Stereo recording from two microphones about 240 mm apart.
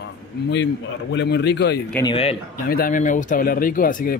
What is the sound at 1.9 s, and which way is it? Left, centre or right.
Speech, centre.